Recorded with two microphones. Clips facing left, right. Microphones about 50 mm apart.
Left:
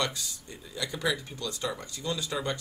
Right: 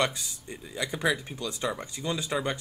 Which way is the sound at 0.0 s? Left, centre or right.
Right.